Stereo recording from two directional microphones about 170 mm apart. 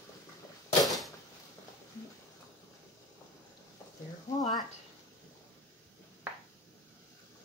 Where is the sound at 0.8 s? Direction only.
Centre (ahead or behind).